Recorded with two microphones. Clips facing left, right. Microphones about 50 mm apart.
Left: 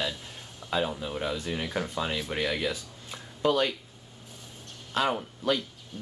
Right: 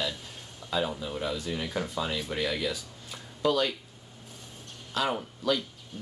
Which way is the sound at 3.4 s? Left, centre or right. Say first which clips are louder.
Left 1 dB; centre.